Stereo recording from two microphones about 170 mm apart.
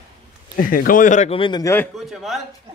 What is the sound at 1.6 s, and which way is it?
Speech, 10° left (ahead or behind).